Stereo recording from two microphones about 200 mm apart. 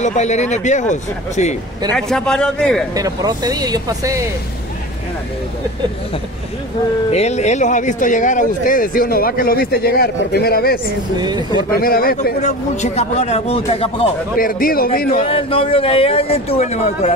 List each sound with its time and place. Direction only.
0.0 s a man's voice: 35° left (ahead or behind)
1.9 s a man's voice: 5° left (ahead or behind)
2.9 s speech: 20° right (ahead or behind)
7.1 s speech: 35° left (ahead or behind); by 10.8 s 50° left (ahead or behind)
11.1 s speech: 20° right (ahead or behind)
11.8 s a man's voice: 45° left (ahead or behind); by 14.1 s 30° left (ahead or behind)
14.4 s speech: 45° left (ahead or behind)
15.1 s a man's voice: 30° left (ahead or behind)